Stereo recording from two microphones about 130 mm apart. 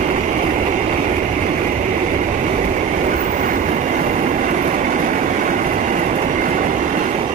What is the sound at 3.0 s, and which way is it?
Train, 85° right.